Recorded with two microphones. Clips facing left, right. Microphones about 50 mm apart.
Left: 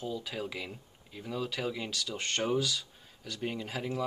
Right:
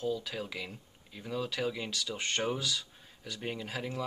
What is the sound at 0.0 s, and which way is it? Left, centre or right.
Speech, centre.